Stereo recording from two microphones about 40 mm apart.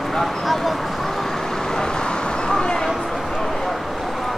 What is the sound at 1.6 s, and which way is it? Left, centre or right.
Vehicle, centre.